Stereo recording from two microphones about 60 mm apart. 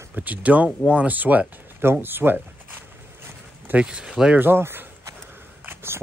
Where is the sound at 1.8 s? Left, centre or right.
Right.